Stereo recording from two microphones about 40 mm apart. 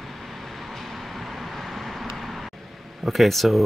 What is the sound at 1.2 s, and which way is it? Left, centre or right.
Vehicle, centre.